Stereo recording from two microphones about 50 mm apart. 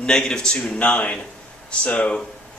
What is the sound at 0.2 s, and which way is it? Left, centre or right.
Speech, centre.